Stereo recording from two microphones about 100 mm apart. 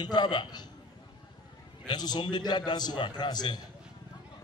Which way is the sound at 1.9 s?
45° left (ahead or behind).